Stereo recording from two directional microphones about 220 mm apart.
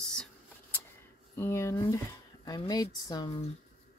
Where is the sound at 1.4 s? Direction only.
10° left (ahead or behind).